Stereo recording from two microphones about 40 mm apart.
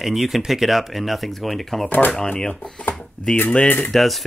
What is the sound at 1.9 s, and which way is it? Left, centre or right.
Speech, left.